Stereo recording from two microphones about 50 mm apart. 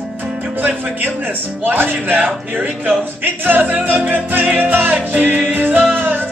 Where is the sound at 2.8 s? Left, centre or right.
Right.